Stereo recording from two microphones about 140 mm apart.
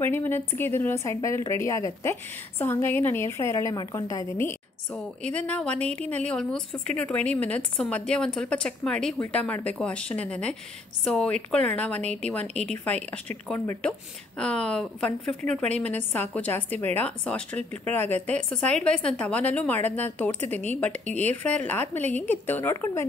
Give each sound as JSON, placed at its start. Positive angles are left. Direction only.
{"t": 0.0, "sound": "a woman's voice", "side_deg": 15}
{"t": 4.9, "sound": "a woman's voice", "side_deg": 5}